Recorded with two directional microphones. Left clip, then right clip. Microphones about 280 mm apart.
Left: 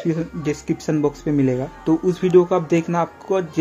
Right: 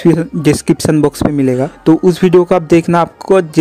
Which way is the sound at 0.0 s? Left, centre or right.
Right.